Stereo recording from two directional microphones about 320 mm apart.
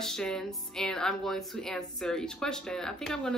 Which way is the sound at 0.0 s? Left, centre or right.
Centre.